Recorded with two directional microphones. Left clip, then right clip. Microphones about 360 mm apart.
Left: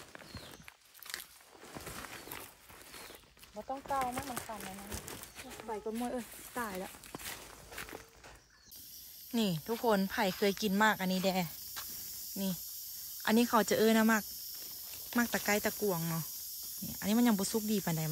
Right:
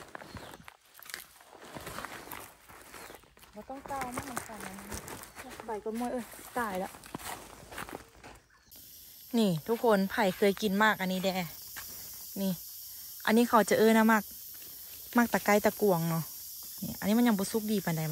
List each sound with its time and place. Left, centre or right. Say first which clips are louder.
0.1 s clip-clop: right 5 dB; centre
1.6 s a sound: right 4 dB; centre
2.9 s walk: right 3 dB; centre
4.0 s speech: left 1 dB; centre
7.2 s walk: right 4 dB; centre
9.3 s speech: right 5 dB; centre
13.2 s speech: right 4 dB; centre